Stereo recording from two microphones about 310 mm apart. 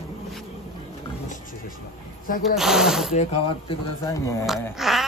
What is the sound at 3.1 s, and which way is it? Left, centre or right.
Speech, centre.